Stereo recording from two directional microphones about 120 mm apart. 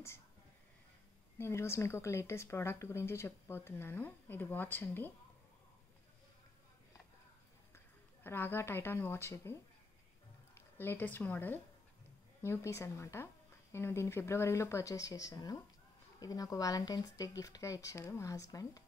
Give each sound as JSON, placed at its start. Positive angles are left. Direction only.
{"t": 1.4, "sound": "speech", "side_deg": 25}
{"t": 7.7, "sound": "a woman's voice", "side_deg": 20}
{"t": 10.8, "sound": "speech", "side_deg": 15}